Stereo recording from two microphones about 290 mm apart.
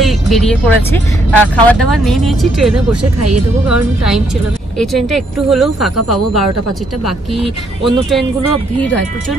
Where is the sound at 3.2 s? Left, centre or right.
Right.